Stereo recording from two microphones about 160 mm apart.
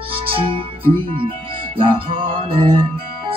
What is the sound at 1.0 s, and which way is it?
Speech, 35° right (ahead or behind).